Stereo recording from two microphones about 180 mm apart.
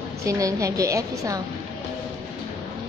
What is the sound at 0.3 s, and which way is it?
A woman's voice, 15° right (ahead or behind).